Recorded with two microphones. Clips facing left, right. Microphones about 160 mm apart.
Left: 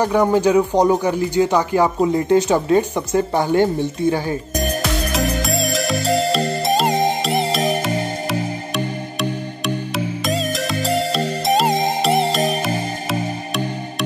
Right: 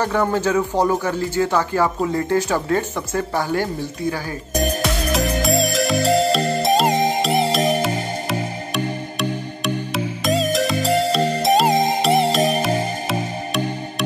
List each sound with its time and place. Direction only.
0.0 s speech: 15° left (ahead or behind)
5.1 s music: centre (ahead or behind)
9.9 s music: centre (ahead or behind)